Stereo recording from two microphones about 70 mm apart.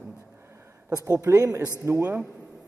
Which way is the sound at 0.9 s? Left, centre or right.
Right.